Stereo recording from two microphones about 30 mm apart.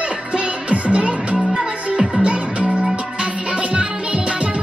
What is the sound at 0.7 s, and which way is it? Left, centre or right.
Music, right.